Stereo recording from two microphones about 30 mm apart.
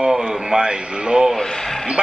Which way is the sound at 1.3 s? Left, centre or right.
Centre.